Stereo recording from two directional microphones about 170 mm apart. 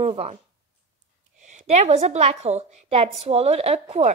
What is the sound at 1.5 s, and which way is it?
A woman's voice, 40° right (ahead or behind).